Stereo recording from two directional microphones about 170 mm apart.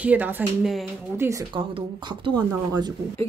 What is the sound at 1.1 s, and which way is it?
Speech, 15° right (ahead or behind).